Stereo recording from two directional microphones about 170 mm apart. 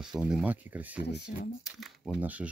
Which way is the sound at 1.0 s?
75° left (ahead or behind).